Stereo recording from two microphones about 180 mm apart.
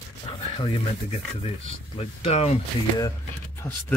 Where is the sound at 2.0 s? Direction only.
35° left (ahead or behind).